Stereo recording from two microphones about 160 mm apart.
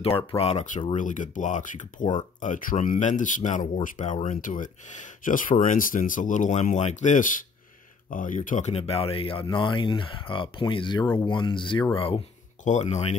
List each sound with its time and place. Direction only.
0.4 s speech: 40° left (ahead or behind)
12.6 s speech: 45° left (ahead or behind)